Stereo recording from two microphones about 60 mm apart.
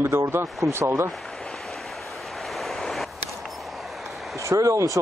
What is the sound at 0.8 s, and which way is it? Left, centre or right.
Speech, right.